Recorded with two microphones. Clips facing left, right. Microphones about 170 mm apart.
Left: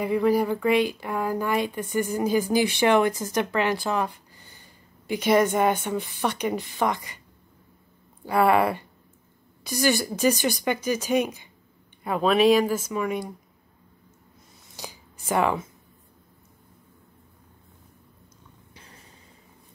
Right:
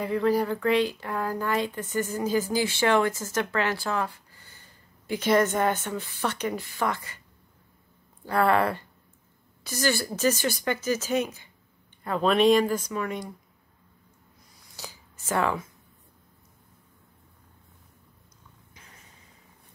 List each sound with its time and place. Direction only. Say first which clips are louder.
0.0 s speech: left 2 dB; 10° left (ahead or behind)
8.3 s speech: left 3 dB; 10° left (ahead or behind)
14.7 s scissors: left 3 dB; 15° left (ahead or behind)
18.7 s a sound: left 4 dB; 30° left (ahead or behind)